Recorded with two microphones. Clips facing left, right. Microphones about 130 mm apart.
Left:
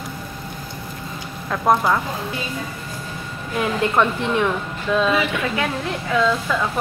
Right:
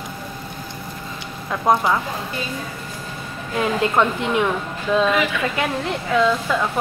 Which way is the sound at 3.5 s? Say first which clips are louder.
Even; 20° right (ahead or behind).